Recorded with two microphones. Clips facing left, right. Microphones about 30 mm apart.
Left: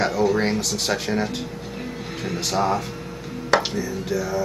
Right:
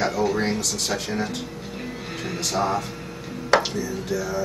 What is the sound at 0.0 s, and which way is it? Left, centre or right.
Speech, centre.